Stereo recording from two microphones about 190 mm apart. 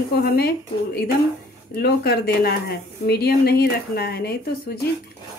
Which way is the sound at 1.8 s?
55° left (ahead or behind).